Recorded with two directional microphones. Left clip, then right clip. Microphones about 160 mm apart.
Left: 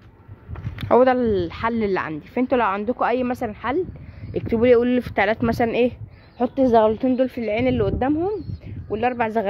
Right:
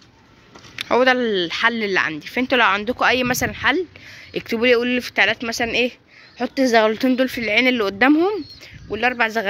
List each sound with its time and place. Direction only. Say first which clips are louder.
0.8 s a woman's voice: even; 10° left (ahead or behind); by 8.1 s 10° right (ahead or behind)
8.1 s speech: right 5 dB; 30° right (ahead or behind)
8.8 s a woman's voice: right 3 dB; 5° right (ahead or behind)